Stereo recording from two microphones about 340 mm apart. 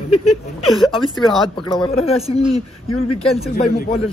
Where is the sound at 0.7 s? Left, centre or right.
Centre.